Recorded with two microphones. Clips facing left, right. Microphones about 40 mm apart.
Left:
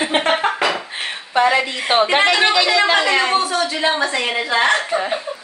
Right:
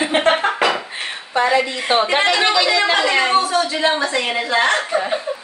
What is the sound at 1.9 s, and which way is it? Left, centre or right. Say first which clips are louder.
Speech: left 2 dB; left.